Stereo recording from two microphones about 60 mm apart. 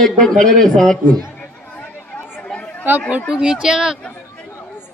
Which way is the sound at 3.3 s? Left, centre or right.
Centre.